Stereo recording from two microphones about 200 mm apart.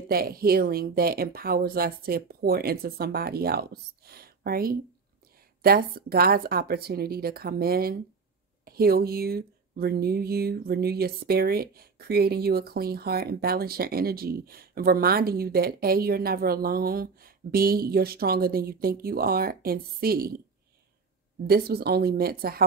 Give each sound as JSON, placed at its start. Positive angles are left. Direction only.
{"t": 0.1, "sound": "speech", "side_deg": -50}
{"t": 21.5, "sound": "speech", "side_deg": -50}